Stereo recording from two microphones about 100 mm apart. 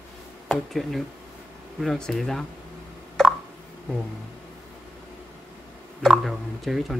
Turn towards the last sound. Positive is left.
turn(degrees=0)  # may be behind; listen again after turning